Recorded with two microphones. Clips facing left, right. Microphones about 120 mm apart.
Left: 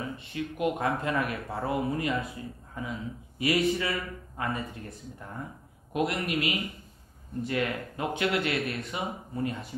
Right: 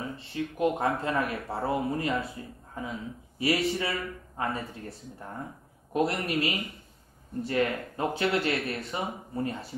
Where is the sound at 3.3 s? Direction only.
30° right (ahead or behind).